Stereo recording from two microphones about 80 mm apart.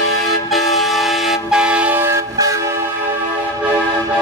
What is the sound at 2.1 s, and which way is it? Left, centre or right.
Train, right.